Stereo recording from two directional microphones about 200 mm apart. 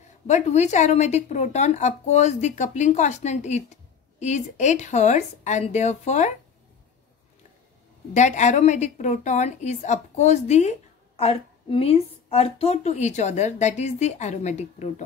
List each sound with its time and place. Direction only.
0.3 s a woman's voice: 35° left (ahead or behind)
8.1 s a woman's voice: 35° left (ahead or behind)